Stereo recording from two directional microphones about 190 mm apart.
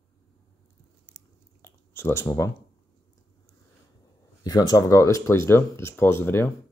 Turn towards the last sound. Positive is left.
turn(degrees=10)  # may be behind; listen again after turning